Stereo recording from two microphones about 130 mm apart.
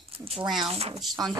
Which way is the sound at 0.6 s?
50° right (ahead or behind).